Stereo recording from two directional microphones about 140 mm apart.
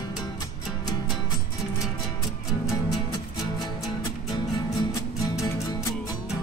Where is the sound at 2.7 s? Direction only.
25° left (ahead or behind).